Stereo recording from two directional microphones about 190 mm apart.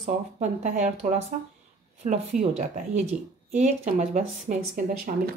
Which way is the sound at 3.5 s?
35° right (ahead or behind).